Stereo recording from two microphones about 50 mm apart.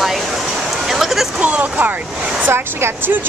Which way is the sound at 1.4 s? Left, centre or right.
Right.